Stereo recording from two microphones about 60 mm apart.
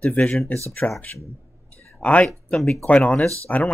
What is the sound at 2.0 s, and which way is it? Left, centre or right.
Speech, centre.